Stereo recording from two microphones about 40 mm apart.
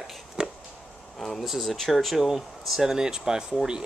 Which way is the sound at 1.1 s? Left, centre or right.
Centre.